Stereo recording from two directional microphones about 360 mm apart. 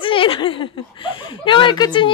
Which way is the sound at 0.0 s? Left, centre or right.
Centre.